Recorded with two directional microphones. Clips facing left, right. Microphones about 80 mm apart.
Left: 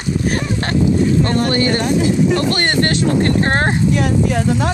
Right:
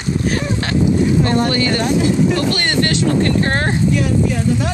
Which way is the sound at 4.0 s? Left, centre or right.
Left.